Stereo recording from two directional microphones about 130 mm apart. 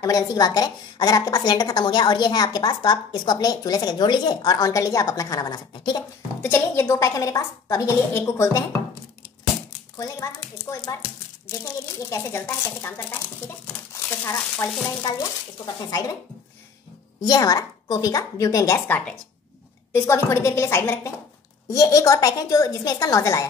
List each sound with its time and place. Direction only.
0.0 s a woman's voice: 25° left (ahead or behind)
6.4 s a woman's voice: 15° left (ahead or behind)
9.7 s a sound: 25° left (ahead or behind)
10.9 s a woman's voice: 25° left (ahead or behind)
15.6 s a woman's voice: 30° left (ahead or behind)
17.2 s a woman's voice: 30° left (ahead or behind)
18.9 s a woman's voice: 10° left (ahead or behind)